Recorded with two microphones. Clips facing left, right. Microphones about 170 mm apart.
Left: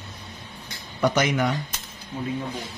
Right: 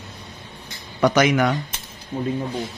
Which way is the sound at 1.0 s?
90° right.